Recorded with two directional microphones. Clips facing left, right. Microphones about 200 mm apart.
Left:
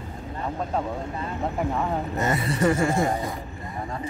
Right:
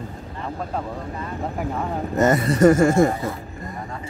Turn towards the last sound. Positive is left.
turn(degrees=-45)  # may be behind; listen again after turning